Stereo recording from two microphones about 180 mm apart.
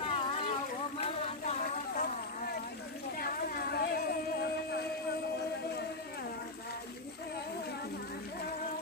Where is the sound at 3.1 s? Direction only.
60° left (ahead or behind).